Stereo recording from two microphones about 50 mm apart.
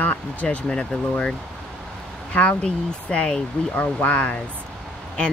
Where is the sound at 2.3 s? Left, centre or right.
Left.